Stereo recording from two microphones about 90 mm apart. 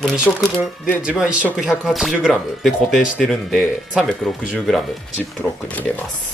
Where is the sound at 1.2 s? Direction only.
10° right (ahead or behind).